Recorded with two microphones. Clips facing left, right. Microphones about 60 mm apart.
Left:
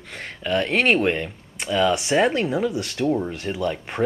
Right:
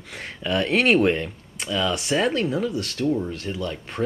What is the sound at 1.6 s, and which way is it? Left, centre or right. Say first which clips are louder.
Speech: left 4 dB; centre.